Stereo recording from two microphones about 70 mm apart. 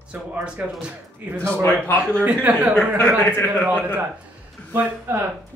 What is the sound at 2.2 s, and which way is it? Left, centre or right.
Speech, right.